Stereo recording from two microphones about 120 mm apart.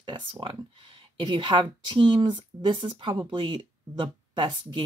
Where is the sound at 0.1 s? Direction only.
45° right (ahead or behind).